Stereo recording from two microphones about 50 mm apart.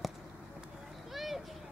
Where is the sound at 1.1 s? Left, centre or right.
Centre.